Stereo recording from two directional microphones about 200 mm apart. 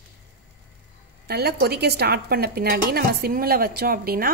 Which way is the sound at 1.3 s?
55° right (ahead or behind).